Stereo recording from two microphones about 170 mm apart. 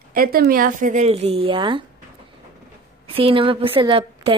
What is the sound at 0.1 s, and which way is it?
Speech, 60° right (ahead or behind).